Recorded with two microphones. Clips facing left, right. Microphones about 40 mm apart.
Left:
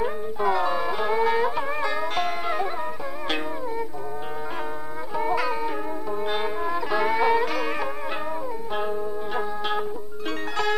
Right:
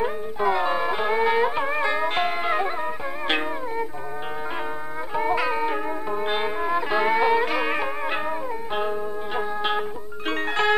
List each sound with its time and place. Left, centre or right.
0.0 s music: right
5.1 s music: right
10.5 s music: right